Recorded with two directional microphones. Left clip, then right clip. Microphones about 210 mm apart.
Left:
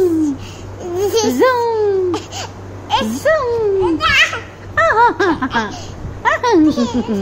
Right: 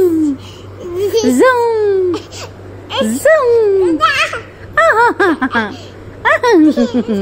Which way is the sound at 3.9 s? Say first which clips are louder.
Even; 10° left (ahead or behind).